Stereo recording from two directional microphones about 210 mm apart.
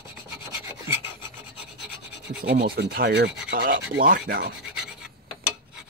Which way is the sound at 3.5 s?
45° right (ahead or behind).